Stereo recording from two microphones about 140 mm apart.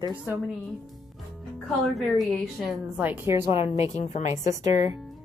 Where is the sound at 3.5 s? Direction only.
45° left (ahead or behind).